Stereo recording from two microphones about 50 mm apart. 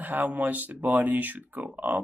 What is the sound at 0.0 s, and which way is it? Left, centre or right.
Speech, right.